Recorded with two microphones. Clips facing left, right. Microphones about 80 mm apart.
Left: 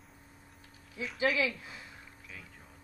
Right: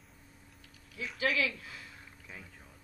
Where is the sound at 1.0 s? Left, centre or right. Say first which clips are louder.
Left 2 dB; left.